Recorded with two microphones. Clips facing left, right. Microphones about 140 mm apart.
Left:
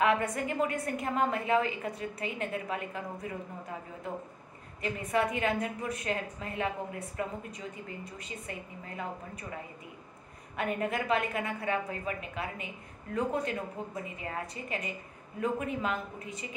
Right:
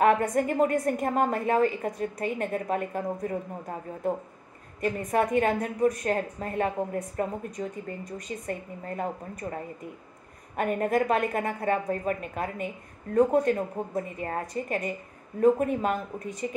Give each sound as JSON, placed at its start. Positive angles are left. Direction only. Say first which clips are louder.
{"t": 0.0, "sound": "a woman's voice", "louder": "right 6 dB", "side_deg": -45}